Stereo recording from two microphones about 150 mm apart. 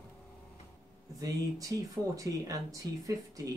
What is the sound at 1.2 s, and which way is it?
Speech, 25° right (ahead or behind).